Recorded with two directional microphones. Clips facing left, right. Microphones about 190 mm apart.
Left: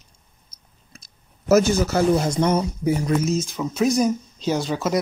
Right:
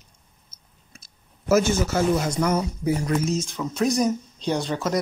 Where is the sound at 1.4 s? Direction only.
40° left (ahead or behind).